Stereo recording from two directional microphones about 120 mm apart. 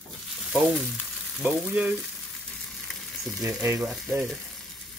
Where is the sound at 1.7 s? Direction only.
15° right (ahead or behind).